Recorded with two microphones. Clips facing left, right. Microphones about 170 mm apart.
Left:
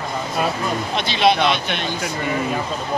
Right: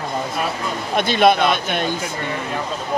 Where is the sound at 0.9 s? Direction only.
50° right (ahead or behind).